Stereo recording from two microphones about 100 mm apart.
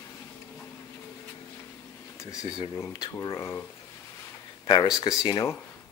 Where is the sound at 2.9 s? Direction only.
45° left (ahead or behind).